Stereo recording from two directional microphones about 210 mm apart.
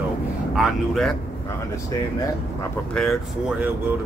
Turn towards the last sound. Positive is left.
turn(degrees=0)  # may be behind; listen again after turning